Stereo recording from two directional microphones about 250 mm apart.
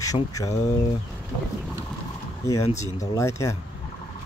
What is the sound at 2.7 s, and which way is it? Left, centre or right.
Speech, centre.